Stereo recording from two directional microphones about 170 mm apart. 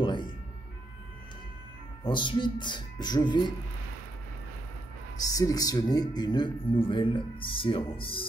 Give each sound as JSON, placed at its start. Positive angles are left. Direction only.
{"t": 0.0, "sound": "ambulance", "side_deg": 30}
{"t": 2.0, "sound": "speech", "side_deg": 30}
{"t": 5.2, "sound": "speech", "side_deg": 20}